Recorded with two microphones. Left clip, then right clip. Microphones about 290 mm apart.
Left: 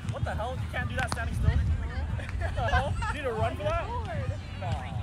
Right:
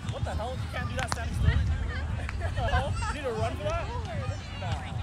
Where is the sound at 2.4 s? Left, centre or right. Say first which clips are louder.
Left 2 dB; centre.